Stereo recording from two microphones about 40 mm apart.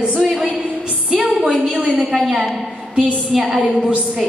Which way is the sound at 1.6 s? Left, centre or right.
Right.